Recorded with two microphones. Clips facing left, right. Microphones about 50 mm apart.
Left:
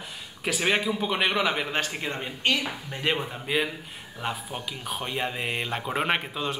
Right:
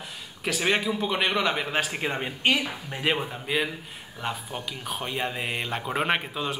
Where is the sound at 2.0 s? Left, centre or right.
Centre.